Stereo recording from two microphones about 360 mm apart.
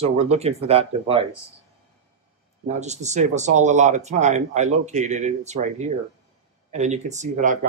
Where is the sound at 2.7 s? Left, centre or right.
Centre.